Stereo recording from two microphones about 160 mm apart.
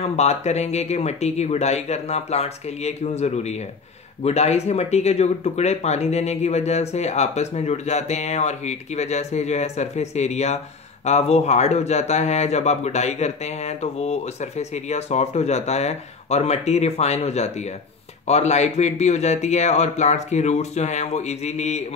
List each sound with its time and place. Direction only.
0.0 s speech: 45° left (ahead or behind)